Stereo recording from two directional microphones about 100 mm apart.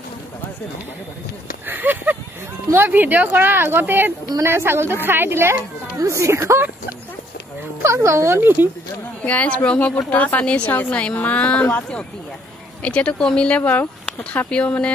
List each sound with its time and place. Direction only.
1.7 s speech: 20° right (ahead or behind)
9.2 s speech: 15° left (ahead or behind)